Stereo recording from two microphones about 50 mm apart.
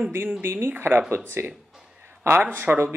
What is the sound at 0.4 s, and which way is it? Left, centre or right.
Speech, right.